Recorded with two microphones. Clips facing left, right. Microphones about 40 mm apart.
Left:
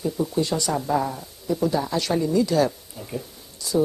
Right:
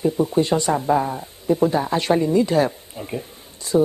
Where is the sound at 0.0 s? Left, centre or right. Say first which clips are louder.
Right 5 dB; right.